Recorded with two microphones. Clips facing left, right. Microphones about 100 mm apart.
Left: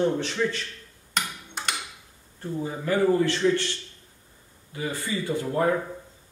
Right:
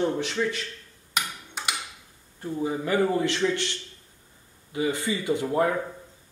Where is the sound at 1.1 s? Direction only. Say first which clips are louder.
Left 1 dB; 5° right (ahead or behind).